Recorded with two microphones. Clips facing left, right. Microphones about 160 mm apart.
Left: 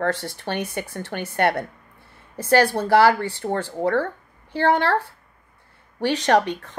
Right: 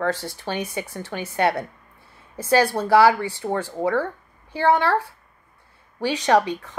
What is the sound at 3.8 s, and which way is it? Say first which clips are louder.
Speech: left 2 dB; 60° left (ahead or behind).